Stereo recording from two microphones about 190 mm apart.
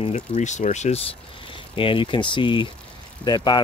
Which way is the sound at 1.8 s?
25° left (ahead or behind).